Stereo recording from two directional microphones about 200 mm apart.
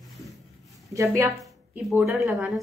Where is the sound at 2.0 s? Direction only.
Centre (ahead or behind).